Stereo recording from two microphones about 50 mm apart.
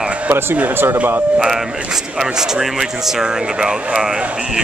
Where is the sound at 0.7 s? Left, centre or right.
Right.